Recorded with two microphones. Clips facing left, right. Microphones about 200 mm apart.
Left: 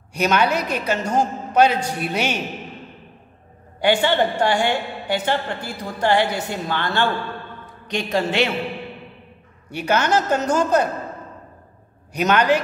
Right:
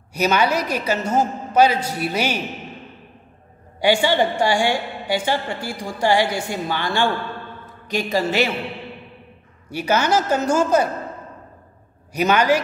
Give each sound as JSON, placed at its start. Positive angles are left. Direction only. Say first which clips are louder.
{"t": 0.1, "sound": "a man's voice", "louder": "even", "side_deg": -5}
{"t": 3.8, "sound": "a woman's voice", "louder": "right 1 dB", "side_deg": -10}
{"t": 9.7, "sound": "a woman's voice", "louder": "even", "side_deg": -5}
{"t": 12.1, "sound": "a woman's voice", "louder": "even", "side_deg": -5}